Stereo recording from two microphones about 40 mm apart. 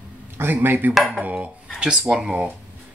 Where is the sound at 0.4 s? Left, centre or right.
Right.